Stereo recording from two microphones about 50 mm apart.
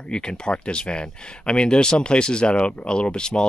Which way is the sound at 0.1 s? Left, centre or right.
Centre.